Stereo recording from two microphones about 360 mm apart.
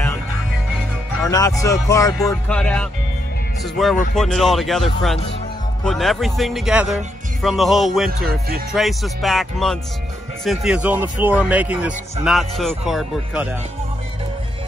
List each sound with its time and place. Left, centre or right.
1.2 s a man's voice: centre
8.3 s speech: right
8.7 s a man's voice: centre